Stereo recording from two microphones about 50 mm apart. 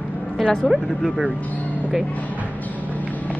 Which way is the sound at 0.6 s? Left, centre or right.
Centre.